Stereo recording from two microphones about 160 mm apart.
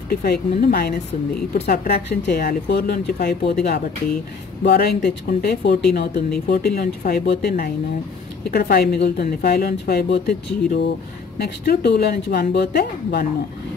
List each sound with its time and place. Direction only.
0.1 s speech: 70° left (ahead or behind)
4.6 s speech: 80° left
9.2 s speech: 75° left (ahead or behind)